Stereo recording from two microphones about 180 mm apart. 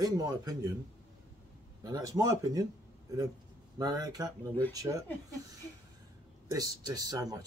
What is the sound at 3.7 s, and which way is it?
A man's voice, 20° right (ahead or behind).